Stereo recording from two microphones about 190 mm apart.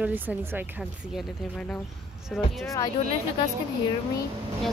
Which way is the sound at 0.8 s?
Centre (ahead or behind).